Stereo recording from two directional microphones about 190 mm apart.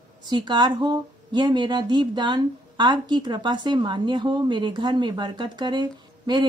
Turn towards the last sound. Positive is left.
turn(degrees=-25)  # may be behind; listen again after turning